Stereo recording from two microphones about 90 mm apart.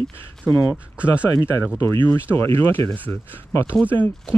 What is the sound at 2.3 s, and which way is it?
Speech, 25° left (ahead or behind).